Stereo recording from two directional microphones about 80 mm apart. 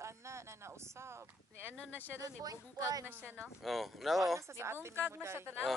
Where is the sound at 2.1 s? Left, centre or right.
Right.